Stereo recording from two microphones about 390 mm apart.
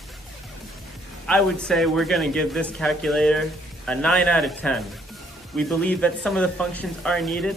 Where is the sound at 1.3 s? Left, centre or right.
Centre.